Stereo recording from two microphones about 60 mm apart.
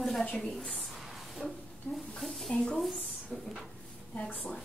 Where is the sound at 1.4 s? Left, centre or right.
Centre.